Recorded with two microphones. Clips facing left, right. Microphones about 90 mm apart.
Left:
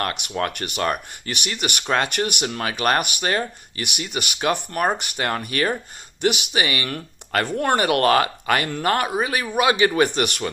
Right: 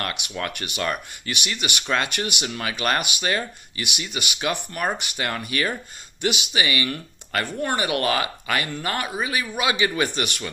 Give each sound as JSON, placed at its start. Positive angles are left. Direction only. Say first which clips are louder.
{"t": 0.0, "sound": "speech", "louder": "left 4 dB", "side_deg": 40}
{"t": 3.8, "sound": "speech", "louder": "left 2 dB", "side_deg": 50}